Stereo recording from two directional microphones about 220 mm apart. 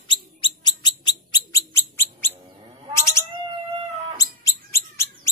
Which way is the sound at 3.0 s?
15° left (ahead or behind).